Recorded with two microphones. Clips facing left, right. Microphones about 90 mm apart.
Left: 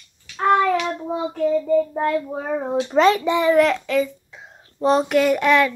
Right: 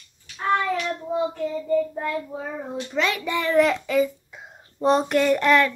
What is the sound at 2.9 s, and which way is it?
Speech, 35° left (ahead or behind).